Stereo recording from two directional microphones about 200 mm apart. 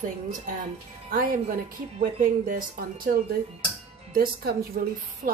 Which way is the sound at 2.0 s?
45° right (ahead or behind).